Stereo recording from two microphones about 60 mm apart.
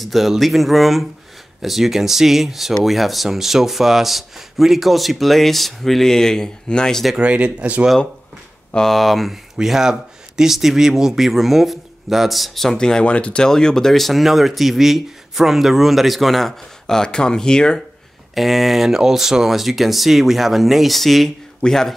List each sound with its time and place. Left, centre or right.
0.0 s speech: centre
7.2 s speech: centre
8.7 s speech: centre
18.3 s speech: centre